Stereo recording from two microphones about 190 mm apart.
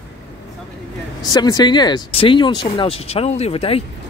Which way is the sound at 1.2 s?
20° left (ahead or behind).